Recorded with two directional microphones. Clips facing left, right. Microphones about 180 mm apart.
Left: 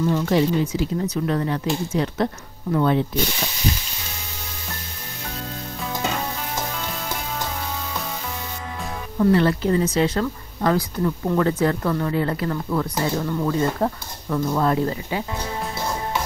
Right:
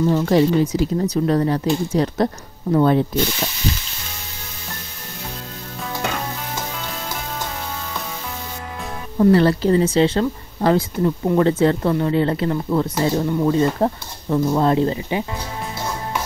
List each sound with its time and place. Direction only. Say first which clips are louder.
0.0 s speech: right 4 dB; 35° right (ahead or behind)
9.2 s speech: right 4 dB; 35° right (ahead or behind)